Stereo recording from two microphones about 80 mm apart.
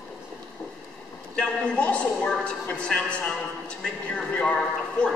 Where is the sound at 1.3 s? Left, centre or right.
Centre.